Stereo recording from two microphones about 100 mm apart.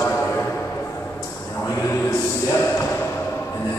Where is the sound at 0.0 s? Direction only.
20° left (ahead or behind).